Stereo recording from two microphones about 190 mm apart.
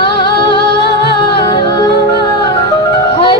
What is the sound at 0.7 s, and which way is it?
Music, 60° left (ahead or behind).